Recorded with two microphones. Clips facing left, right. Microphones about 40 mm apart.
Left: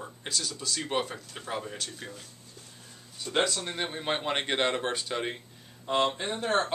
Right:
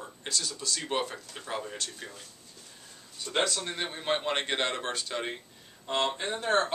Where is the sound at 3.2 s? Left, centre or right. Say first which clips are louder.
Left 1 dB; centre.